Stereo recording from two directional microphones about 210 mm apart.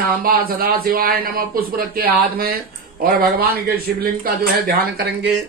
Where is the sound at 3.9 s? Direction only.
50° right (ahead or behind).